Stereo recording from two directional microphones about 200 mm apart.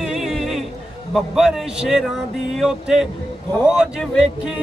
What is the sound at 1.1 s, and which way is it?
Speech, centre (ahead or behind).